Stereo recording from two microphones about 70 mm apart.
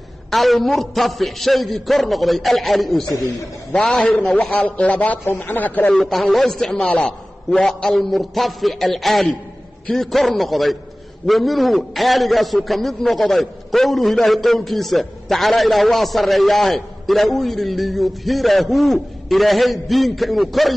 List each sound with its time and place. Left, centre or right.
0.3 s a man's voice: centre; by 5.2 s left
5.2 s speech: left
5.9 s a man's voice: centre
7.6 s a man's voice: centre